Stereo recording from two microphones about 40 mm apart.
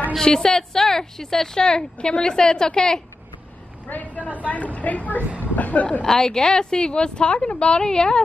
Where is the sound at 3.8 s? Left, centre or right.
Left.